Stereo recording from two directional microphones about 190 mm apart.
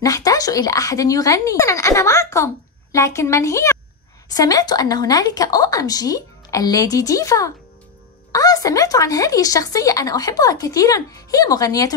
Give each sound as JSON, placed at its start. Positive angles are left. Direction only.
{"t": 0.0, "sound": "a woman's voice", "side_deg": 20}